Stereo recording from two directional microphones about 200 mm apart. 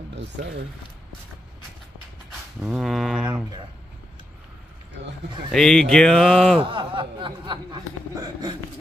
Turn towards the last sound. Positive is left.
turn(degrees=-25)  # may be behind; listen again after turning